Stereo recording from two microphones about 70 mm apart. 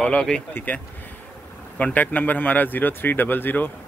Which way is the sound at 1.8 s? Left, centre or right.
Left.